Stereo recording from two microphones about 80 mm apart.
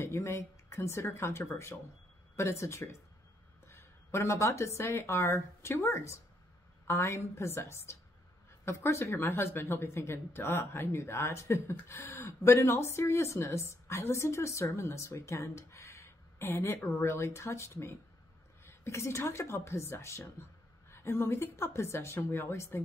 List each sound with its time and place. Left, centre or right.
0.0 s a woman's voice: left